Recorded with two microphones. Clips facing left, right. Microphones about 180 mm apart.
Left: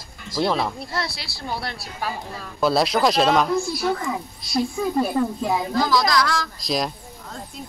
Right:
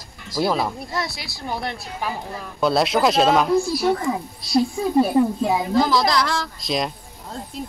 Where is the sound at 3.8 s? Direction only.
20° right (ahead or behind).